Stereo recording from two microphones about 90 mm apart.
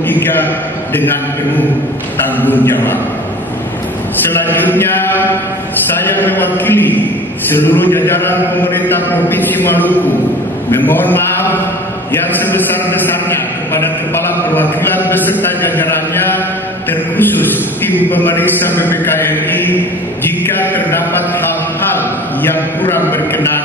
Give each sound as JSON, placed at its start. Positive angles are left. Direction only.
{"t": 0.1, "sound": "a man's voice", "side_deg": 20}
{"t": 2.3, "sound": "a man's voice", "side_deg": 20}
{"t": 4.3, "sound": "a man's voice", "side_deg": 25}
{"t": 10.7, "sound": "a sound", "side_deg": 20}
{"t": 15.0, "sound": "a man's voice", "side_deg": 20}
{"t": 22.4, "sound": "a man's voice", "side_deg": 25}